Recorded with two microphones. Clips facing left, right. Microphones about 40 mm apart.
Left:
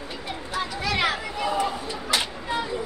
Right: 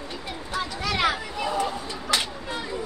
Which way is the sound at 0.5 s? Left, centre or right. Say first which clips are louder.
Left 1 dB; centre.